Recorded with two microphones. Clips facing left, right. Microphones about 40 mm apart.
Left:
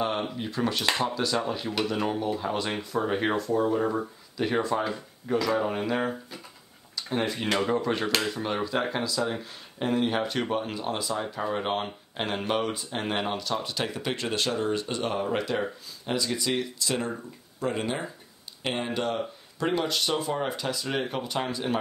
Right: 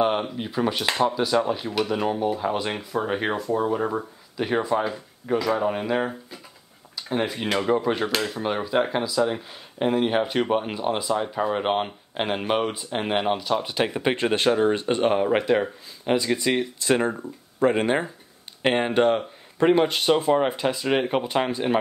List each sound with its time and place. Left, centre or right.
0.4 s speech: centre
8.1 s speech: centre; by 21.7 s right